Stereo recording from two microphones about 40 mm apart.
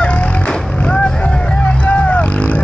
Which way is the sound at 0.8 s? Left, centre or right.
Left.